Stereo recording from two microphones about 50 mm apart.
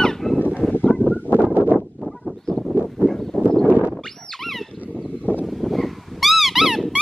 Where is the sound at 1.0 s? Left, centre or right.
Right.